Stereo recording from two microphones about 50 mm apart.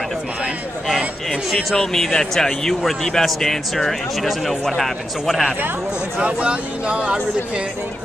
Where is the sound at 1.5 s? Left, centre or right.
Centre.